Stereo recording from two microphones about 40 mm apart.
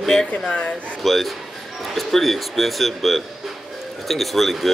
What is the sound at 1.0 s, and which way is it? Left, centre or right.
Speech, centre.